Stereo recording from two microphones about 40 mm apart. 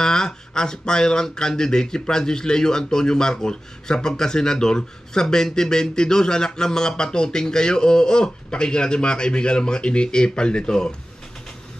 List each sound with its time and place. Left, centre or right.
0.0 s speech: centre